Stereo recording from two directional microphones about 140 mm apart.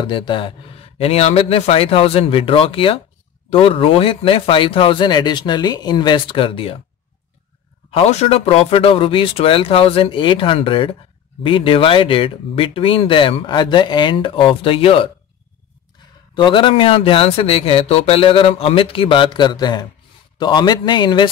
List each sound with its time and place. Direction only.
0.0 s speech: 35° left (ahead or behind)
7.9 s speech: 50° left (ahead or behind)
16.3 s speech: 35° left (ahead or behind)